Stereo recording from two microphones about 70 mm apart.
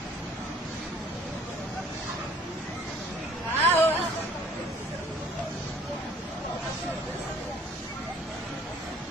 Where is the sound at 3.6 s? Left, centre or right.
Left.